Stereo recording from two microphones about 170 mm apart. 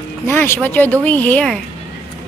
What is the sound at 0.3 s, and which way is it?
Speech, 10° left (ahead or behind).